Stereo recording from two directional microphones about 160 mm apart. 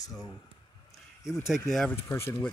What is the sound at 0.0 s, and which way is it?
Speech, 20° left (ahead or behind).